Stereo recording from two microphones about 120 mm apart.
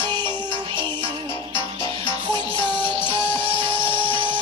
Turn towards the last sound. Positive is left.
turn(degrees=15)  # may be behind; listen again after turning